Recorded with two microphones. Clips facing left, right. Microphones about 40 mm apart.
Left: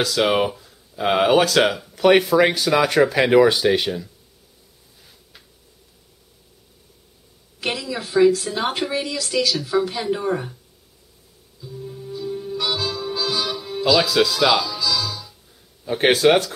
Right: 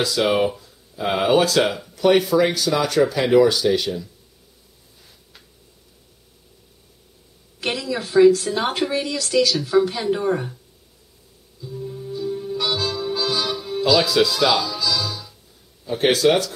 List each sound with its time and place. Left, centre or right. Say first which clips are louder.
0.1 s speech: even; centre
0.5 s a sound: right 2 dB; centre
1.0 s speech: left 1 dB; left
7.6 s a woman's voice: right 1 dB; centre
11.6 s music: right 3 dB; centre
15.8 s speech: left 1 dB; left